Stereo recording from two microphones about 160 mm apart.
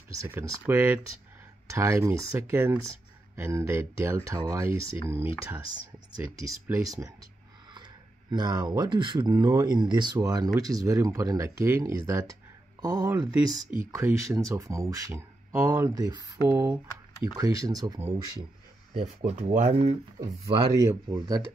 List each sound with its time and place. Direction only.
0.2 s speech: 15° right (ahead or behind)
6.7 s speech: 20° right (ahead or behind)
18.9 s speech: 45° right (ahead or behind)
20.6 s speech: 20° right (ahead or behind)